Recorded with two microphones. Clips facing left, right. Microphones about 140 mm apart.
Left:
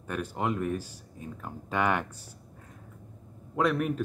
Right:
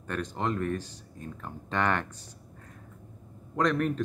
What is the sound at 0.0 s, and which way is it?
Speech, 10° left (ahead or behind).